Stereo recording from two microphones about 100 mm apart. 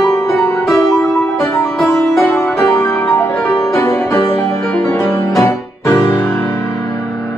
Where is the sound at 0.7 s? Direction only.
Centre (ahead or behind).